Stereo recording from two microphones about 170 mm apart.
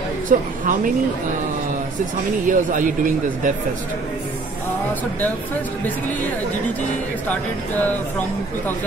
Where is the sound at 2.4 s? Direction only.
50° right (ahead or behind).